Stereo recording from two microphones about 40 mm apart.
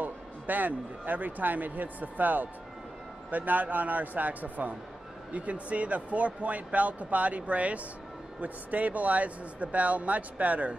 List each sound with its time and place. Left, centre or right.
0.0 s a man's voice: right